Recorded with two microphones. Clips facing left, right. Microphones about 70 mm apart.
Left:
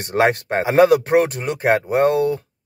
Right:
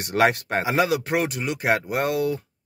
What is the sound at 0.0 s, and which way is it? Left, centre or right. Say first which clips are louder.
Speech: left 3 dB; left.